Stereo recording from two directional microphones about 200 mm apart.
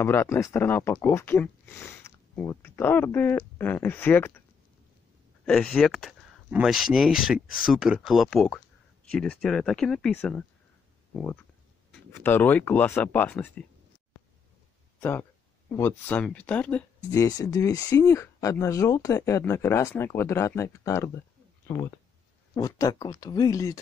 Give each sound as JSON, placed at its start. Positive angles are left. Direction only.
{"t": 0.0, "sound": "speech", "side_deg": 10}
{"t": 5.4, "sound": "speech", "side_deg": 5}
{"t": 15.0, "sound": "speech", "side_deg": 10}